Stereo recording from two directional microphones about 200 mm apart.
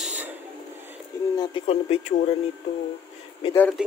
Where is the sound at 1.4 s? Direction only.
30° left (ahead or behind).